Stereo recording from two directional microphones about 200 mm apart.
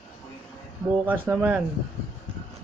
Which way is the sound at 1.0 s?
10° right (ahead or behind).